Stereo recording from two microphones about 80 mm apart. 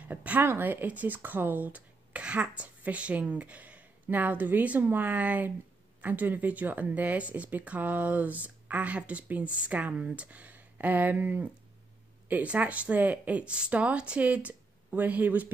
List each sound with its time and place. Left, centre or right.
0.1 s speech: centre